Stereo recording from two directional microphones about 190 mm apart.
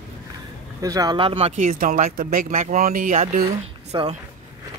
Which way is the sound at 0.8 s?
20° right (ahead or behind).